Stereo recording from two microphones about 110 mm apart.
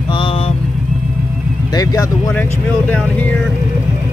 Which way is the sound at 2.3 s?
15° left (ahead or behind).